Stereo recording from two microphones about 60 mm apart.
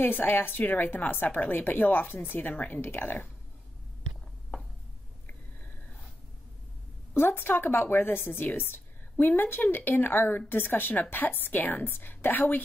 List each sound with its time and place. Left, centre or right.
0.0 s a woman's voice: left
2.5 s a woman's voice: left
2.8 s a woman's voice: left
7.2 s a woman's voice: left